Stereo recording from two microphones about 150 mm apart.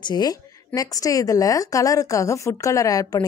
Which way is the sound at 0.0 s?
25° left (ahead or behind).